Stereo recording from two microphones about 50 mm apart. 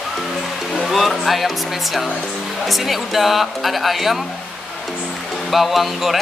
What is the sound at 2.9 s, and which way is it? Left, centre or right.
Speech, centre.